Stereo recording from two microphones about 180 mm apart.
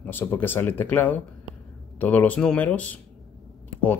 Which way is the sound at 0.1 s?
10° left (ahead or behind).